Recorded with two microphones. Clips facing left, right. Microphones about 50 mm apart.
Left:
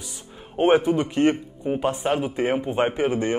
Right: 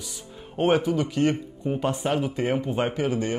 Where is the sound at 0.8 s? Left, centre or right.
Left.